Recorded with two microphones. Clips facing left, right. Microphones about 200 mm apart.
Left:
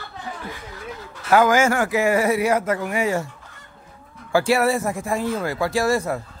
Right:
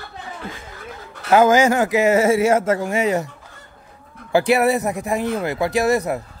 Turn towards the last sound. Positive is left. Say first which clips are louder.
# right 2 dB
turn(degrees=-20)  # may be behind; listen again after turning